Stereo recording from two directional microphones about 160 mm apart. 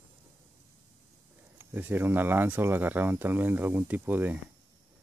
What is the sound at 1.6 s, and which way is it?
Speech, 10° right (ahead or behind).